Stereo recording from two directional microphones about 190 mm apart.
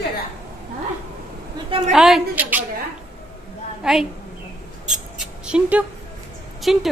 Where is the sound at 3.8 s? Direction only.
5° right (ahead or behind).